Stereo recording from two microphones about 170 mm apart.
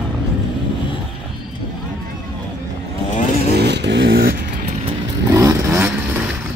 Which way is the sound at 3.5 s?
80° right.